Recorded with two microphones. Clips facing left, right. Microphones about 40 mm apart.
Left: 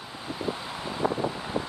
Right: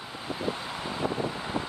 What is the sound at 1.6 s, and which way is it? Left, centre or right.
Vehicle, left.